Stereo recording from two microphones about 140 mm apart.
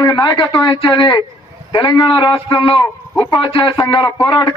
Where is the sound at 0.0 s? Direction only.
30° left (ahead or behind).